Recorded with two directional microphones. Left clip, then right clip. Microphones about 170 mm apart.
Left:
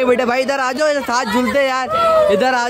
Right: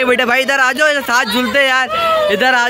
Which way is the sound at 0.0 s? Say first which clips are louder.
Right 2 dB; 5° left (ahead or behind).